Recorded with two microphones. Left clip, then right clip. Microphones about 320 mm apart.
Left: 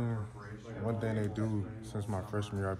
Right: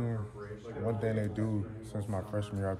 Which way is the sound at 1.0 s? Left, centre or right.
Centre.